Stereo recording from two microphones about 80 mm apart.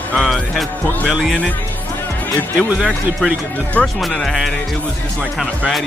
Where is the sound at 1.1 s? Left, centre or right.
Centre.